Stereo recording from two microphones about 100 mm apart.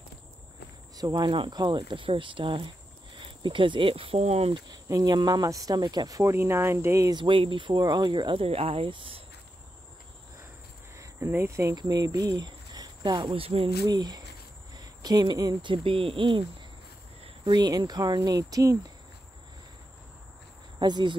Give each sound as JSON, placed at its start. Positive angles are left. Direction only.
{"t": 0.9, "sound": "speech", "side_deg": -40}
{"t": 4.8, "sound": "speech", "side_deg": -35}
{"t": 6.3, "sound": "speech", "side_deg": -25}
{"t": 7.2, "sound": "speech", "side_deg": -55}
{"t": 8.5, "sound": "speech", "side_deg": -75}
{"t": 11.0, "sound": "speech", "side_deg": -25}
{"t": 11.7, "sound": "speech", "side_deg": -40}
{"t": 13.8, "sound": "speech", "side_deg": -40}
{"t": 15.6, "sound": "speech", "side_deg": -60}
{"t": 20.8, "sound": "speech", "side_deg": -45}